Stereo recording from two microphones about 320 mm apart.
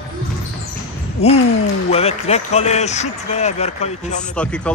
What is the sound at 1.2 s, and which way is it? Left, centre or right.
Speech, centre.